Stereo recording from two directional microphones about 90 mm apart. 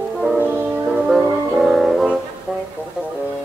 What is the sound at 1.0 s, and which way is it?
Music, 5° right (ahead or behind).